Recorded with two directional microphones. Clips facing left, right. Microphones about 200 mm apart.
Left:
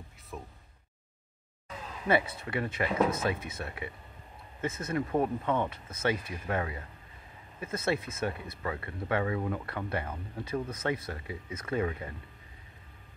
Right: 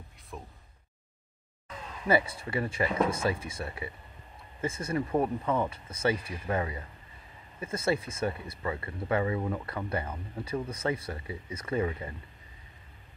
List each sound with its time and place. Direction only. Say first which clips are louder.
0.3 s a sound: left 1 dB; 5° left (ahead or behind)
2.0 s speech: right 1 dB; 10° right (ahead or behind)
4.6 s speech: right 1 dB; 10° right (ahead or behind)
8.1 s speech: right 2 dB; centre (ahead or behind)